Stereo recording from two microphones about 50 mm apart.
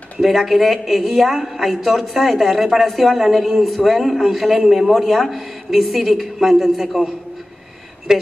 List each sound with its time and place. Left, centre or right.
0.2 s a woman's voice: centre
8.1 s speech: centre